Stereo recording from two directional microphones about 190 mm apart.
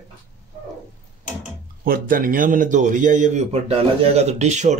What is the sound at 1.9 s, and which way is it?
Speech, 45° right (ahead or behind).